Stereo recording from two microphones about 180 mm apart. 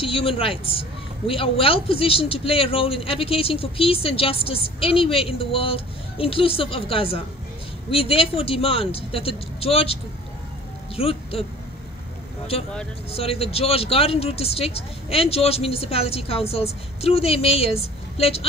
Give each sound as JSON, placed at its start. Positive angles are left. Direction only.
{"t": 0.0, "sound": "a woman's voice", "side_deg": 30}
{"t": 11.0, "sound": "speech", "side_deg": 35}
{"t": 13.1, "sound": "a woman's voice", "side_deg": 35}